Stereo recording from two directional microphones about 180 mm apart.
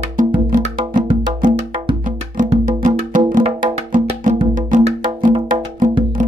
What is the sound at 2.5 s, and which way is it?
Music, 40° right (ahead or behind).